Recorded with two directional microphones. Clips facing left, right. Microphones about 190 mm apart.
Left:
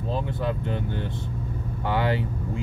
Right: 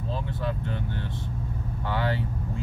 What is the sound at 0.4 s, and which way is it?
Speech, 15° left (ahead or behind).